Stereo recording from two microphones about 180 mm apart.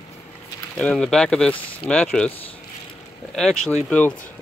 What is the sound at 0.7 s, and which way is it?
Speech, 5° left (ahead or behind).